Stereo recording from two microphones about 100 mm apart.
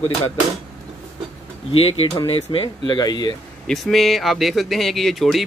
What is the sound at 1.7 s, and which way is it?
Speech, 65° left (ahead or behind).